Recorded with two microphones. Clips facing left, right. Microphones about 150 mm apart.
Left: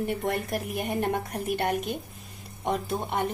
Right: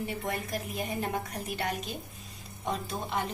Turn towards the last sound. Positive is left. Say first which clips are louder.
# left 5 dB
turn(degrees=60)  # may be behind; listen again after turning